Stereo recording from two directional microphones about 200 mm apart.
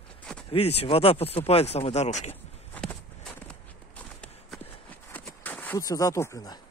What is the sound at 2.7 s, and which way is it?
Walk, 5° left (ahead or behind).